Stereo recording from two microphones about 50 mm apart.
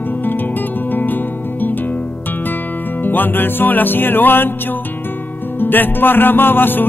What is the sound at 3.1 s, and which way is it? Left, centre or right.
Music, left.